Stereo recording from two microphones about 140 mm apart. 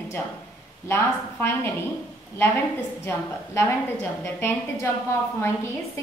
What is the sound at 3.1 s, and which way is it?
A woman's voice, 15° left (ahead or behind).